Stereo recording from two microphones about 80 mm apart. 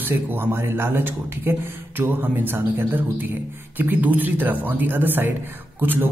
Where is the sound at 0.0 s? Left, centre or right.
Right.